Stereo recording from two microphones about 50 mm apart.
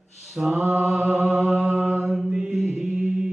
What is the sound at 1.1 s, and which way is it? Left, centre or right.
Music, centre.